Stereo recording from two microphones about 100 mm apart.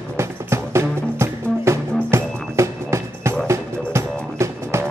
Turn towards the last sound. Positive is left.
turn(degrees=-30)  # may be behind; listen again after turning